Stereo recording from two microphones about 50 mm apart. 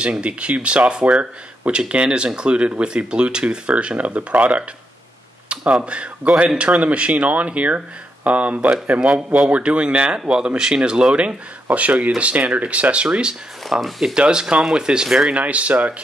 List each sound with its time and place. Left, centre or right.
0.0 s speech: right
9.1 s speech: centre
11.7 s speech: right
13.3 s speech: centre
14.1 s speech: centre
15.2 s speech: right